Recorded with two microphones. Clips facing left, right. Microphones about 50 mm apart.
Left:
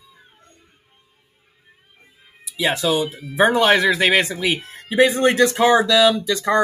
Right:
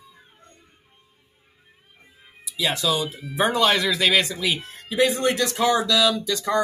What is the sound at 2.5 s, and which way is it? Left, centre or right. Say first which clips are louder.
Speech: left 4 dB; left.